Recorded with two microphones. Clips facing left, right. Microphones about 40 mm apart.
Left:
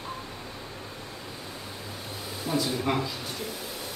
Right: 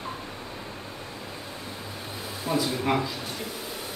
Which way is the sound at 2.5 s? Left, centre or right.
Centre.